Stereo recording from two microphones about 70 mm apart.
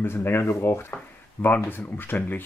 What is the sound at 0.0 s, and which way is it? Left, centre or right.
Speech, left.